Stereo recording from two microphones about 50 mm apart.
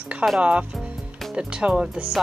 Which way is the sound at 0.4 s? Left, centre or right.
Right.